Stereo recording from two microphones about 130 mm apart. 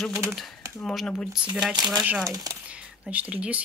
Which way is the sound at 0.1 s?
20° right (ahead or behind).